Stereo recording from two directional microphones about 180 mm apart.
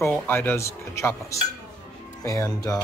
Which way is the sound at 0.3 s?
10° left (ahead or behind).